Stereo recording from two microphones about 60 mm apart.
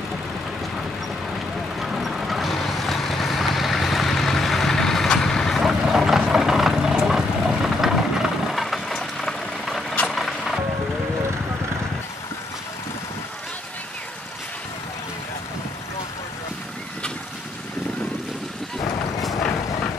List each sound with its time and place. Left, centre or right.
1.8 s vehicle: centre
5.6 s vehicle: centre